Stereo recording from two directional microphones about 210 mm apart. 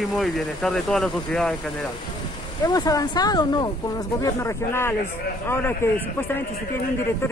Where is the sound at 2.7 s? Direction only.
15° left (ahead or behind).